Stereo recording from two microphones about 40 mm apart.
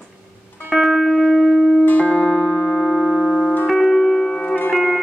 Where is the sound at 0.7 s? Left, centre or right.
Centre.